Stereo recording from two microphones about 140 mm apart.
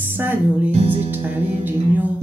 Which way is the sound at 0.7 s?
45° right (ahead or behind).